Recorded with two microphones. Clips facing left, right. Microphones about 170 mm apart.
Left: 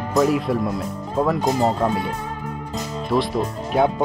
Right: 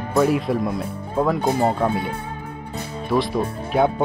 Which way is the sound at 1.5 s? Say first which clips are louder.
Even; 10° right (ahead or behind).